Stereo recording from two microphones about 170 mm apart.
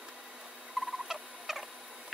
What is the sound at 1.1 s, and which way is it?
Rodents, centre (ahead or behind).